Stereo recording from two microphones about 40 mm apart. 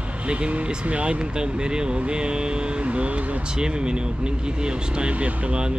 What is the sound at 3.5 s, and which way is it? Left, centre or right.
Speech, right.